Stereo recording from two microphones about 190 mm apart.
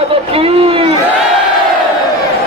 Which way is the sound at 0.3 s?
30° right (ahead or behind).